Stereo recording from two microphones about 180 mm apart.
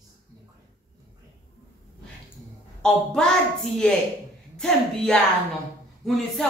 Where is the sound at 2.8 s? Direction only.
5° left (ahead or behind).